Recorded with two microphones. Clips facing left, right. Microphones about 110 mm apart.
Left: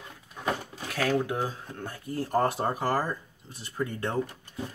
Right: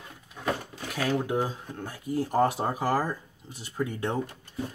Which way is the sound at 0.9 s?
15° right (ahead or behind).